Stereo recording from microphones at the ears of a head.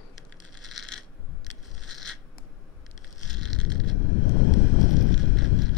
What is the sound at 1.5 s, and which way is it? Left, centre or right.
Scrape, left.